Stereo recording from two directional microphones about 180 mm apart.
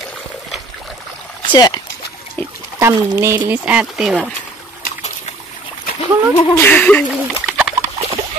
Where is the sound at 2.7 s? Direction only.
15° right (ahead or behind).